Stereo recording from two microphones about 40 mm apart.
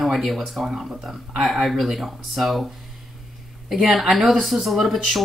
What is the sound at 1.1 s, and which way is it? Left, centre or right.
Speech, centre.